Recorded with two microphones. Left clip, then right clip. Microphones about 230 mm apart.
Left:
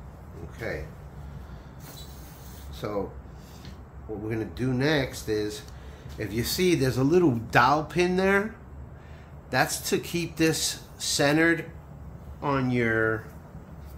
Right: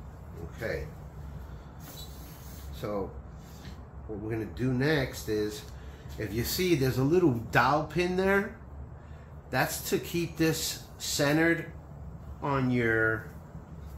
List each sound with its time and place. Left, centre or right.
2.8 s speech: left
4.3 s speech: left
9.5 s speech: left